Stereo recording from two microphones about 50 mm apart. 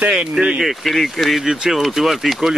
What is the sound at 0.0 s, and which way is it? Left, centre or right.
Speech, centre.